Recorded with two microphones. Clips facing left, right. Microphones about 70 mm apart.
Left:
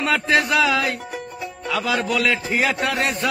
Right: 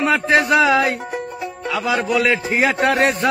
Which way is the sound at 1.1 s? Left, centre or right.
Right.